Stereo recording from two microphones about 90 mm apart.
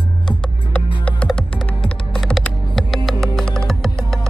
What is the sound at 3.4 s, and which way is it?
Music, 5° left (ahead or behind).